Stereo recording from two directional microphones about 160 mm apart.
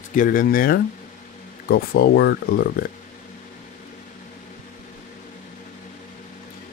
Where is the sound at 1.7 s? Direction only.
75° left (ahead or behind); by 2.6 s 90° left.